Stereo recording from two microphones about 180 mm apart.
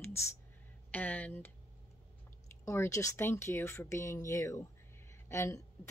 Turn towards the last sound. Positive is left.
turn(degrees=15)  # may be behind; listen again after turning